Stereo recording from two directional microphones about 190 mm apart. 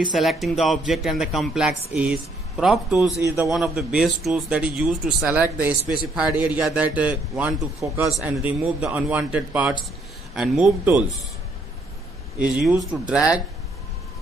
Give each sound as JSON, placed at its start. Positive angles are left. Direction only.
{"t": 0.1, "sound": "speech", "side_deg": 0}
{"t": 3.2, "sound": "speech", "side_deg": -15}
{"t": 3.4, "sound": "speech", "side_deg": -5}
{"t": 12.4, "sound": "speech", "side_deg": -5}